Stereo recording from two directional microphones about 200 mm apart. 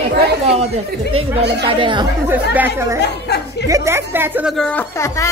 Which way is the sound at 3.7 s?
15° right (ahead or behind).